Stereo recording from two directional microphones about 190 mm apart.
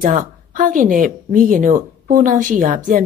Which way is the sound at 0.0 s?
45° right (ahead or behind).